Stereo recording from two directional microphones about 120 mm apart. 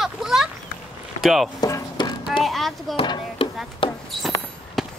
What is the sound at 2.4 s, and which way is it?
Speech, centre (ahead or behind).